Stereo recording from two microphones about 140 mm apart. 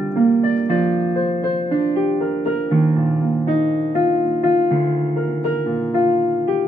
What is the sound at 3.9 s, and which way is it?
Electric piano, 55° left (ahead or behind).